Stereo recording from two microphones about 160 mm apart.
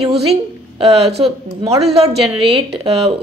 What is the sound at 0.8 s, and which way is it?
Speech, 40° right (ahead or behind).